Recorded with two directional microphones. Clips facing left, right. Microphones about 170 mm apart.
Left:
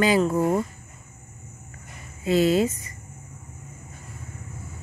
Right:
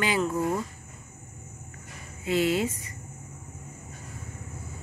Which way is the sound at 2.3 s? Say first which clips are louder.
Left 5 dB; 40° left (ahead or behind).